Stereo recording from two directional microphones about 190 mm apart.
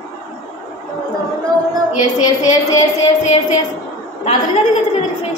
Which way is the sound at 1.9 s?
40° left (ahead or behind).